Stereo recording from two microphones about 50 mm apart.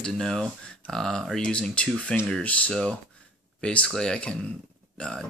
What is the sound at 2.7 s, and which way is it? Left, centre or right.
Speech, centre.